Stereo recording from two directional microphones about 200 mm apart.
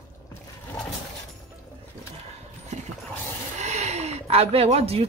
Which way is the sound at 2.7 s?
35° right (ahead or behind).